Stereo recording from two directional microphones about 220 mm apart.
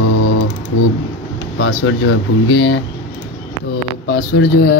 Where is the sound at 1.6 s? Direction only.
65° left (ahead or behind).